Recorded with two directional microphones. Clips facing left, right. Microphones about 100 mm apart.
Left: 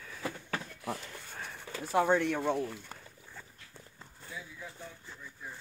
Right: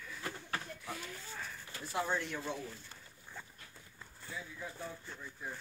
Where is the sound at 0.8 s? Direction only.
65° left (ahead or behind).